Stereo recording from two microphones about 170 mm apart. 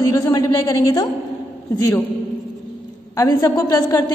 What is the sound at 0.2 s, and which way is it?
Speech, 20° left (ahead or behind).